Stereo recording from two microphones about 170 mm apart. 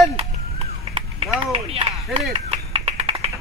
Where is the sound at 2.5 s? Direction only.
40° right (ahead or behind).